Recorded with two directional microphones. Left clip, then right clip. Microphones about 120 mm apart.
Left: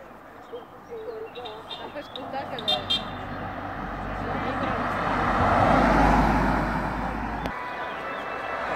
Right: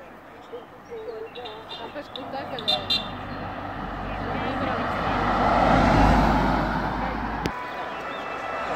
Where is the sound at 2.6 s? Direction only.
10° right (ahead or behind).